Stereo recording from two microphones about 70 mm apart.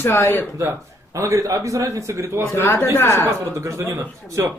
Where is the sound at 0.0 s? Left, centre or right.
Left.